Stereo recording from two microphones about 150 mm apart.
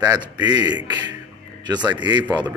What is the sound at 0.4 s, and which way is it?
Speech, 25° right (ahead or behind).